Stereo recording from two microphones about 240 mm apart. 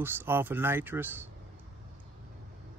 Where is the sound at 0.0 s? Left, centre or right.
Centre.